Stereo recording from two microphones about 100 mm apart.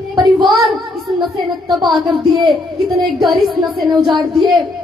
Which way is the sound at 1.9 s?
Centre (ahead or behind).